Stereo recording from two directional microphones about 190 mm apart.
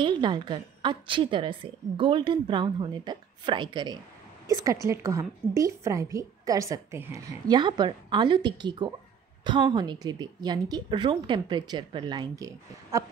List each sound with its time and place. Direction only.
0.0 s a woman's voice: 25° right (ahead or behind)